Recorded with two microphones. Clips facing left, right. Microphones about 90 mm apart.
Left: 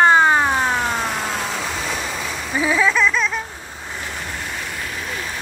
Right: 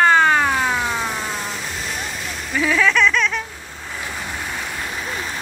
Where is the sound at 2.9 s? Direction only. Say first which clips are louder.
Right 1 dB; 10° left (ahead or behind).